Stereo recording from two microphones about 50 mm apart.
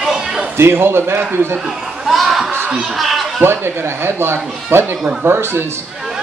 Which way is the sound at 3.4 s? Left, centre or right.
Right.